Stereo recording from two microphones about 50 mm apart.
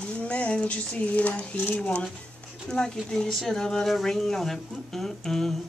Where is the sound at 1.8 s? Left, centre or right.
Left.